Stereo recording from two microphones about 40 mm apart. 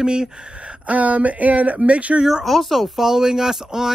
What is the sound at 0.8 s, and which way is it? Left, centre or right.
Speech, right.